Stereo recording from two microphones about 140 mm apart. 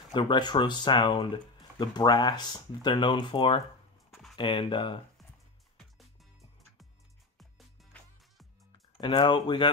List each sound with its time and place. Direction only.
0.1 s speech: 35° left (ahead or behind)
4.1 s a sound: centre (ahead or behind)
4.4 s speech: 35° left (ahead or behind)
9.0 s speech: 35° left (ahead or behind)